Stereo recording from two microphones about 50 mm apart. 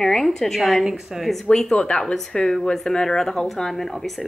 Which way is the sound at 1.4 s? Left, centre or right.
Centre.